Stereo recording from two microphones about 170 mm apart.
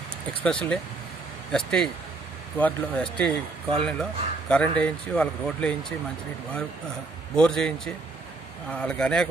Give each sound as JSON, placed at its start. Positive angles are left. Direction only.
{"t": 0.4, "sound": "a man's voice", "side_deg": 5}
{"t": 7.3, "sound": "speech", "side_deg": 5}